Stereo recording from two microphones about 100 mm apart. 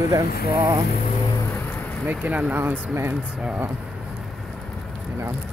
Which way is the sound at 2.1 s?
15° right (ahead or behind).